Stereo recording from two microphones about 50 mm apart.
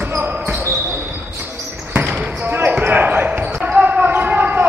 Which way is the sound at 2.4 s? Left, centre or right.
Right.